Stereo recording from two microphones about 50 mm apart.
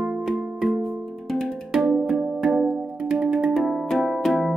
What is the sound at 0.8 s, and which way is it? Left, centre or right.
Music, centre.